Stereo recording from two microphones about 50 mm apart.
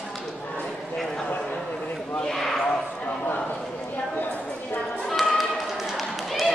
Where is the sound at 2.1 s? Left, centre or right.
Centre.